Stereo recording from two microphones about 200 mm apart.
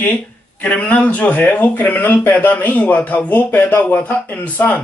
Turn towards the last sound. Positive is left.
turn(degrees=10)  # may be behind; listen again after turning